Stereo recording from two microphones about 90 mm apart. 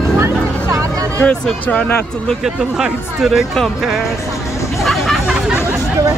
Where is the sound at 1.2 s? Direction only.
10° left (ahead or behind).